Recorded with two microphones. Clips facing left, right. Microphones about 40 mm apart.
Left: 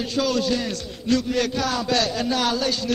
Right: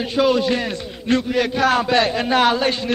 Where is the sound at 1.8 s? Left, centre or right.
Right.